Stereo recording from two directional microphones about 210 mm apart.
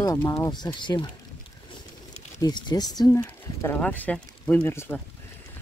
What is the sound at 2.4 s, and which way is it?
Speech, 20° left (ahead or behind).